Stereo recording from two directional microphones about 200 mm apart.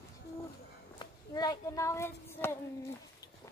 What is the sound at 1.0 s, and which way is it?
Child singing, 20° left (ahead or behind).